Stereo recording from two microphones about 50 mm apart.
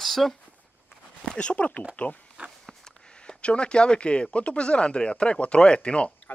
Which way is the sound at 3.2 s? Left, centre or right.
Left.